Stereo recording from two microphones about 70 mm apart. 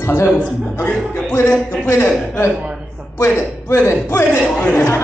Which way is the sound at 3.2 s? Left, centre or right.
Left.